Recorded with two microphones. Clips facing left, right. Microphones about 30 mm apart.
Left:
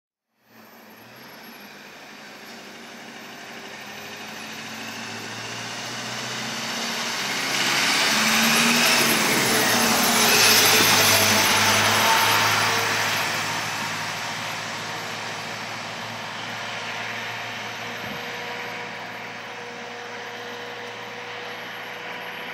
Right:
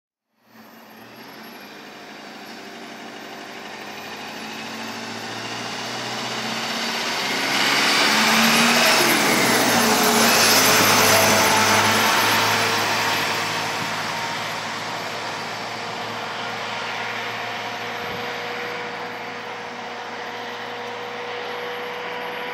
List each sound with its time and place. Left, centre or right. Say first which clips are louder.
4.4 s vehicle: right 3 dB; right
9.7 s vacuum cleaner: right 3 dB; centre
10.1 s vehicle: right 1 dB; centre
11.4 s music: right 2 dB; centre
11.7 s vehicle: right 1 dB; centre